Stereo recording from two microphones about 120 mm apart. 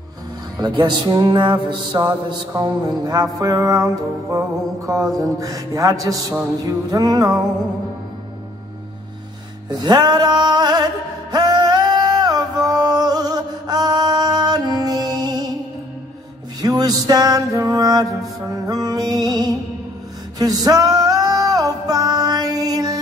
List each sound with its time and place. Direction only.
0.6 s music: 35° right (ahead or behind)
9.7 s music: 35° right (ahead or behind)
16.6 s music: 35° right (ahead or behind)